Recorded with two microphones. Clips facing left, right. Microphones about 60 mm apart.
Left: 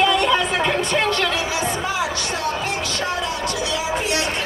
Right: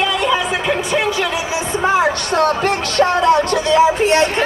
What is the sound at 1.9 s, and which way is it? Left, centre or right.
Speech, right.